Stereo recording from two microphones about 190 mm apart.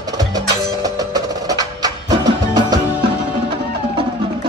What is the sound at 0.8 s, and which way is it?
Music, 20° right (ahead or behind).